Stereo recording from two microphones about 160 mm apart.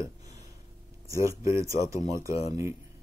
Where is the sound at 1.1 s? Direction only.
20° right (ahead or behind).